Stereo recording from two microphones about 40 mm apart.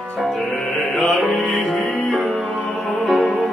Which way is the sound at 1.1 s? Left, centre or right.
Centre.